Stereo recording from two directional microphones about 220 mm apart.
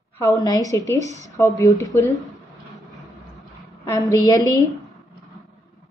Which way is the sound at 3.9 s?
15° left (ahead or behind).